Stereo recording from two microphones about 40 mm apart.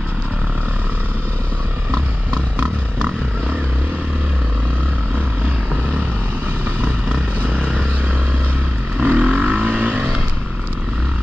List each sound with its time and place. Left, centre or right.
7.4 s vehicle: right
9.0 s vehicle: right